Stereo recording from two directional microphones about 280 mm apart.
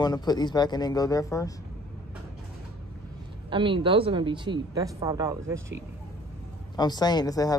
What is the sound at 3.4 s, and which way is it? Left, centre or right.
A woman's voice, centre.